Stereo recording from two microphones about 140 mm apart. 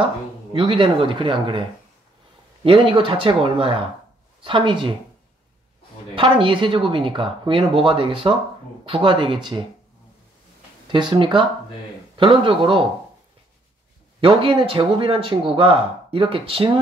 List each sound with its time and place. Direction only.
0.0 s speech: 40° right (ahead or behind)
6.1 s speech: 40° right (ahead or behind)
10.9 s speech: 35° right (ahead or behind)
14.2 s speech: 40° right (ahead or behind)